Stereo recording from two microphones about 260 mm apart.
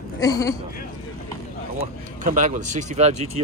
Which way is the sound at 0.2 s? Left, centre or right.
Centre.